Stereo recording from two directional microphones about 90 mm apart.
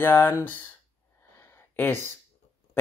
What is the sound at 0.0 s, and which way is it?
Speech, 25° left (ahead or behind).